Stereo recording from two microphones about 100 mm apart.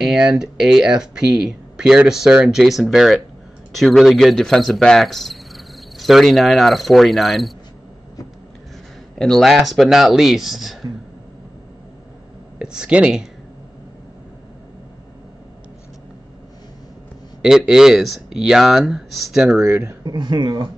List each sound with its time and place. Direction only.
0.0 s speech: 5° right (ahead or behind)
9.2 s speech: centre (ahead or behind)
12.5 s speech: 10° right (ahead or behind)
17.4 s speech: 5° right (ahead or behind)
20.1 s speech: 50° right (ahead or behind)